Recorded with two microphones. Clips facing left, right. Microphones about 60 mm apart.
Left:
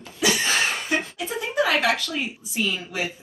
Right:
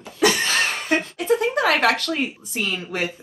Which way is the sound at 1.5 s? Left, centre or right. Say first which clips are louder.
Right 2 dB; right.